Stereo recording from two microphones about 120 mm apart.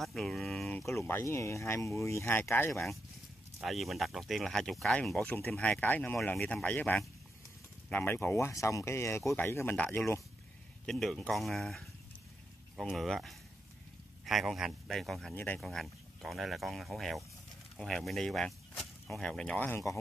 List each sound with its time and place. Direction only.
0.0 s speech: centre (ahead or behind)
0.9 s speech: 20° left (ahead or behind)
2.7 s speech: centre (ahead or behind); by 10.2 s 20° left (ahead or behind)
10.9 s speech: centre (ahead or behind)